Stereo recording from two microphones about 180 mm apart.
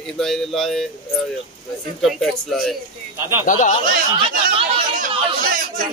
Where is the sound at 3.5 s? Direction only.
45° left (ahead or behind).